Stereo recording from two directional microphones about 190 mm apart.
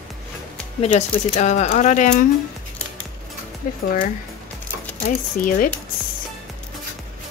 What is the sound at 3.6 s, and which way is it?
Speech, 45° left (ahead or behind).